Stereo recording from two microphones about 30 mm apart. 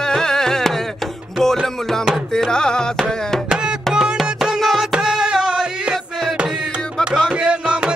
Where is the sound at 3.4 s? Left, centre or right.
Right.